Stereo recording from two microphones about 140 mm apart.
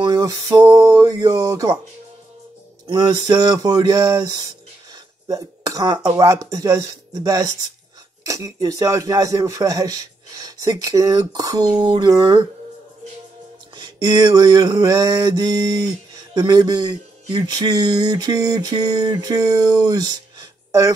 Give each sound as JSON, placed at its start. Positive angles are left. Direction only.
{"t": 0.0, "sound": "a sound", "side_deg": -30}
{"t": 0.7, "sound": "speech", "side_deg": -25}
{"t": 2.9, "sound": "speech", "side_deg": -30}
{"t": 13.7, "sound": "speech", "side_deg": -30}